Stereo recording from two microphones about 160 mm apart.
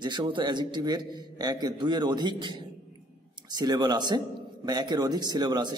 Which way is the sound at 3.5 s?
25° right (ahead or behind).